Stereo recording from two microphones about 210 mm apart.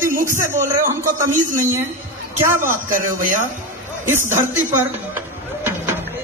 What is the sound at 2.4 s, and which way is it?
Speech, 10° right (ahead or behind).